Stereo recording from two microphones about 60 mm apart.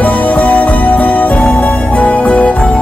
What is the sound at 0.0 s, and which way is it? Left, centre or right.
Music, left.